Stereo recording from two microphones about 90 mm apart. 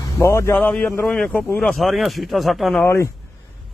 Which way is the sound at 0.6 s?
20° left (ahead or behind).